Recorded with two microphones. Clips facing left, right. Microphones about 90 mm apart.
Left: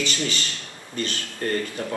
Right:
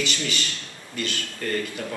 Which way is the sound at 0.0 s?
35° left (ahead or behind).